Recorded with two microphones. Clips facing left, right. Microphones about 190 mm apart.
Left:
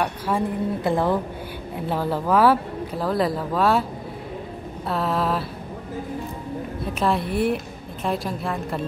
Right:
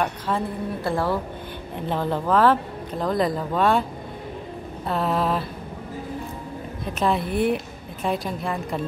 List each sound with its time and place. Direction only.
0.3 s a woman's voice: 10° left (ahead or behind)
1.8 s speech: 5° left (ahead or behind)
4.8 s a woman's voice: centre (ahead or behind)
7.0 s a woman's voice: centre (ahead or behind)